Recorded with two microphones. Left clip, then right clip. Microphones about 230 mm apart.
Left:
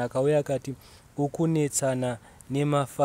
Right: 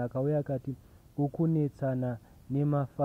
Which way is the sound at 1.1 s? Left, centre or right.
Left.